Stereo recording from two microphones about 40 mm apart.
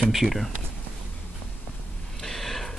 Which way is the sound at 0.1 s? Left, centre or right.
Centre.